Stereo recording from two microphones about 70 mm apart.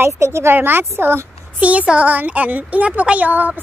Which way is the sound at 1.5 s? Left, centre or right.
Centre.